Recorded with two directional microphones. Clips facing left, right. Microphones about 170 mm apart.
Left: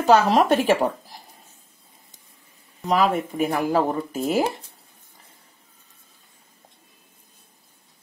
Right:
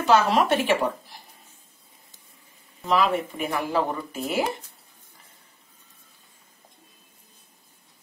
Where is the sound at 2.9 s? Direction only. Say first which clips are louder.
Left 2 dB; 45° left (ahead or behind).